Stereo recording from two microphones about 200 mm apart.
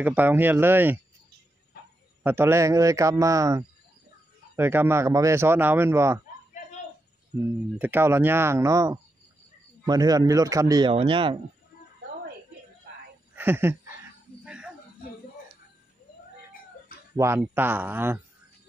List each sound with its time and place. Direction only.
0.0 s speech: 10° right (ahead or behind)
2.2 s speech: 10° right (ahead or behind)
7.8 s speech: 10° right (ahead or behind)
13.4 s a sound: 10° right (ahead or behind)
14.4 s snake: 5° right (ahead or behind)
17.1 s speech: 15° right (ahead or behind)